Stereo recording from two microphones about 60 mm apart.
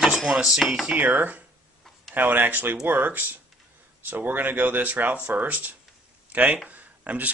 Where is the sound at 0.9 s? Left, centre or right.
Right.